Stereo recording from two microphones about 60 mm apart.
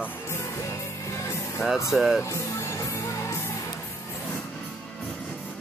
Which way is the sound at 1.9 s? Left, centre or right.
Centre.